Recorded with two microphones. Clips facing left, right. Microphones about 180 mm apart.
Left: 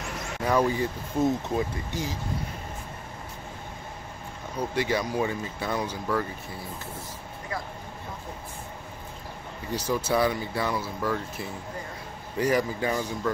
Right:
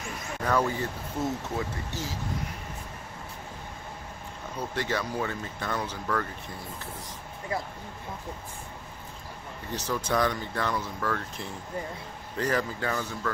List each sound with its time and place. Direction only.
0.4 s speech: 10° left (ahead or behind)
4.6 s speech: 10° left (ahead or behind)
9.7 s speech: 10° left (ahead or behind)